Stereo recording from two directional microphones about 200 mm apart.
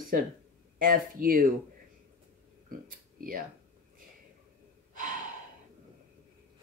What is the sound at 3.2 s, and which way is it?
Speech, 45° right (ahead or behind).